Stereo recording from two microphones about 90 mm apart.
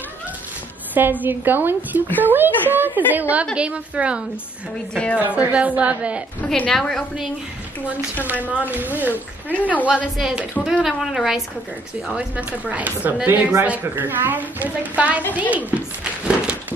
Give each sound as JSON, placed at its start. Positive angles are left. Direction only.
{"t": 1.2, "sound": "a woman's voice", "side_deg": -20}
{"t": 4.9, "sound": "a woman's voice", "side_deg": 15}
{"t": 5.2, "sound": "a woman's voice", "side_deg": -15}
{"t": 6.4, "sound": "a woman's voice", "side_deg": 15}
{"t": 8.3, "sound": "a woman's voice", "side_deg": -15}
{"t": 10.1, "sound": "a woman's voice", "side_deg": -5}
{"t": 15.5, "sound": "a sound", "side_deg": -10}